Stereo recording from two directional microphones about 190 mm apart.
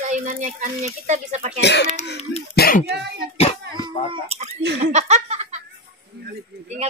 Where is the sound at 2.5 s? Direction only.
55° left (ahead or behind).